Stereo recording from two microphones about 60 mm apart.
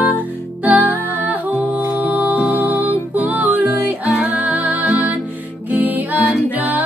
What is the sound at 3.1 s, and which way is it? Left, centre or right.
Music, right.